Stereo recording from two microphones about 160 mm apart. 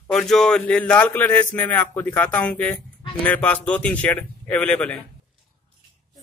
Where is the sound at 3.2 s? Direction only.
10° left (ahead or behind).